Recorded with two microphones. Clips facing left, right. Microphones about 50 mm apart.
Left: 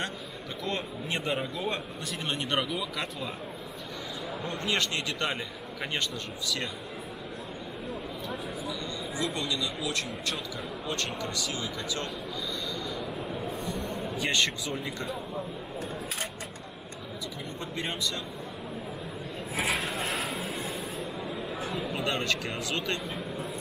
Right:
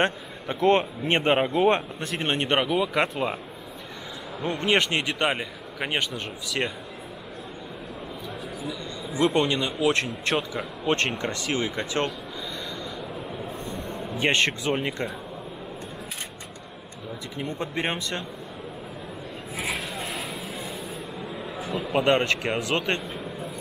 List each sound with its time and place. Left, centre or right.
0.0 s speech: right
4.4 s a man's voice: right
9.2 s speech: right
13.7 s a sound: right
14.7 s speech: right
17.4 s speech: right
19.5 s a sound: centre
21.9 s speech: right